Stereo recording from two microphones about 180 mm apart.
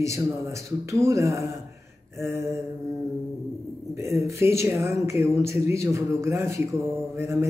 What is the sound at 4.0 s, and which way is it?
Speech, 15° right (ahead or behind).